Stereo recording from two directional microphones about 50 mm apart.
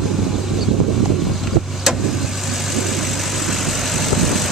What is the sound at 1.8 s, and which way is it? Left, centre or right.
Vehicle, centre.